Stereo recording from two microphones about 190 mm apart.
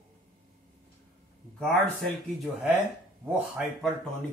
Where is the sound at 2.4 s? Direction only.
10° right (ahead or behind).